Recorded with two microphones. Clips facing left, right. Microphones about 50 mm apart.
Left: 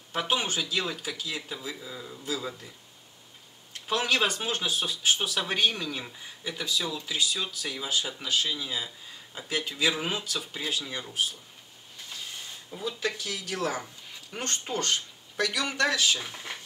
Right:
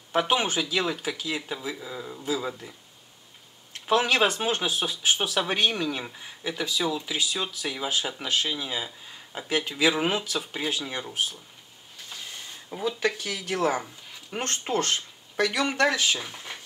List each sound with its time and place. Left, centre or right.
0.1 s speech: centre
3.8 s speech: centre
12.6 s speech: right
14.4 s speech: right
14.9 s speech: centre
16.3 s speech: centre